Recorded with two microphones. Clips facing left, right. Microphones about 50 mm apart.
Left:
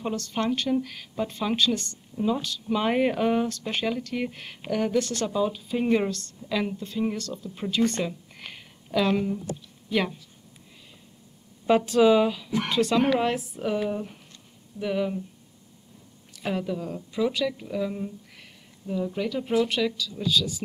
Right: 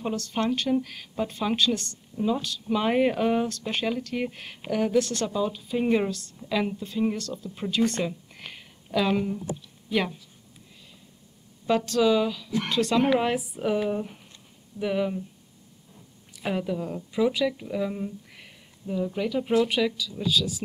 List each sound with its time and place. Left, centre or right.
0.0 s speech: centre
11.6 s speech: centre
12.6 s speech: centre
13.1 s a woman's voice: centre
16.3 s a woman's voice: centre